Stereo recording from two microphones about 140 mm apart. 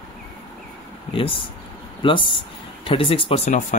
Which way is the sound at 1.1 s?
40° left (ahead or behind).